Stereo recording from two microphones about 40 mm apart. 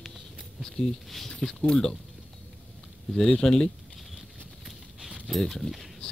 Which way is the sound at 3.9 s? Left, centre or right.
Centre.